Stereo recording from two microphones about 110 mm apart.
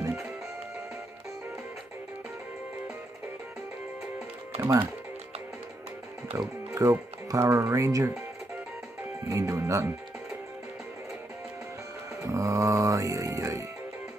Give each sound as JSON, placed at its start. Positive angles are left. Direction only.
{"t": 4.6, "sound": "speech", "side_deg": -20}
{"t": 6.3, "sound": "speech", "side_deg": -30}
{"t": 9.3, "sound": "speech", "side_deg": -30}
{"t": 12.2, "sound": "music", "side_deg": -25}